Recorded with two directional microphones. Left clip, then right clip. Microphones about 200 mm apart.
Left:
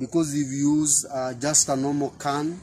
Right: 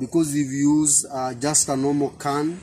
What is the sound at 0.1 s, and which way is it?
Speech, 10° left (ahead or behind).